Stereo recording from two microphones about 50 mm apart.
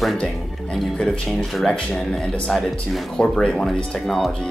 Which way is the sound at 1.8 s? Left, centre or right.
Centre.